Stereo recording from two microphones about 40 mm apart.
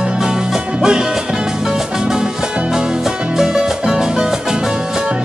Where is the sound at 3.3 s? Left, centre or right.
Centre.